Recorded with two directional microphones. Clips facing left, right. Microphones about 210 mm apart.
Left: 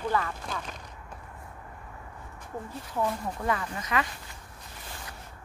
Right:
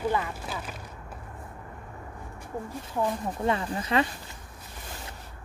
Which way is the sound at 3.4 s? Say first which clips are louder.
Right 4 dB; 30° right (ahead or behind).